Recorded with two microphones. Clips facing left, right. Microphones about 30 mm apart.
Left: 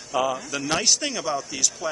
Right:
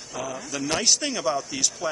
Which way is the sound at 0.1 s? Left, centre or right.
Left.